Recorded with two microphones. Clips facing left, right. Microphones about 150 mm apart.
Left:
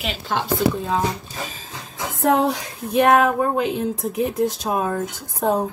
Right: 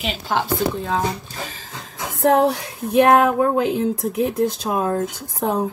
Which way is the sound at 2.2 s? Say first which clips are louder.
Right 2 dB; 85° right.